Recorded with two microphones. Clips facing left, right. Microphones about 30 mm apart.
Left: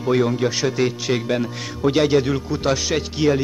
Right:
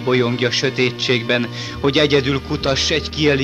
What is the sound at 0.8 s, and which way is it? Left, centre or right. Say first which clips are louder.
Speech: right 3 dB; right.